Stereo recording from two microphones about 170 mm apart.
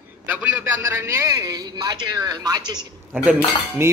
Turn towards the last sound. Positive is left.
turn(degrees=-15)  # may be behind; listen again after turning